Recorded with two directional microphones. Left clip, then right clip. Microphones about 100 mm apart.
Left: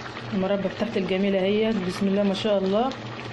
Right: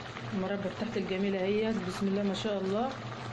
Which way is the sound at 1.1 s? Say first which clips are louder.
Left 8 dB; 30° left (ahead or behind).